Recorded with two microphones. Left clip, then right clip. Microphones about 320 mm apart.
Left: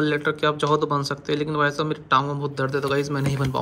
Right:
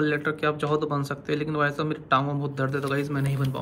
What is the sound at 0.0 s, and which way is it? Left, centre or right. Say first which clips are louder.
Speech: left 3 dB; centre.